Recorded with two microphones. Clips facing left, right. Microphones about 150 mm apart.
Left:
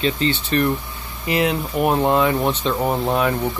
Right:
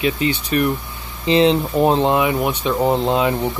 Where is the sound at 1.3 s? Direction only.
25° right (ahead or behind).